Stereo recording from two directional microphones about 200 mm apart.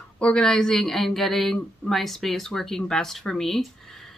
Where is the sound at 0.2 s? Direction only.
5° left (ahead or behind).